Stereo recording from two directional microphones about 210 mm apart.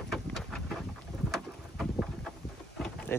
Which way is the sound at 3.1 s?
10° left (ahead or behind).